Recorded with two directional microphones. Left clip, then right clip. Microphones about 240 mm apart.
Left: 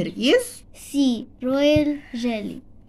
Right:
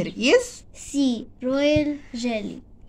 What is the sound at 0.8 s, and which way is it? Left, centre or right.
Speech, centre.